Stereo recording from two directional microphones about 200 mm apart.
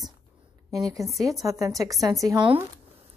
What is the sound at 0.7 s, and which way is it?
A woman's voice, 15° right (ahead or behind).